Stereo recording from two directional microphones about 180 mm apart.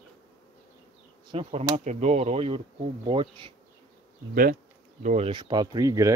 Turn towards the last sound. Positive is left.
turn(degrees=-20)  # may be behind; listen again after turning